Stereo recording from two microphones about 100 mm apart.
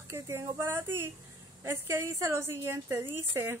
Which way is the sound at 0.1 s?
25° right (ahead or behind).